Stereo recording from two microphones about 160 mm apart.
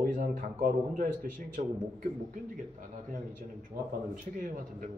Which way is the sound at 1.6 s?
55° right (ahead or behind).